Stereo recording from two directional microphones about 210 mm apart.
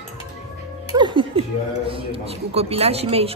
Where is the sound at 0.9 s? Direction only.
20° right (ahead or behind).